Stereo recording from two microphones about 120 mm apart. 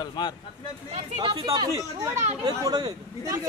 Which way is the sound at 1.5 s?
30° right (ahead or behind).